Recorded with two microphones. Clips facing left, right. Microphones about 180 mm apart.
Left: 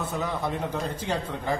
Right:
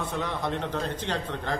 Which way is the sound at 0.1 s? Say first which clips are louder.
Left 1 dB; 5° left (ahead or behind).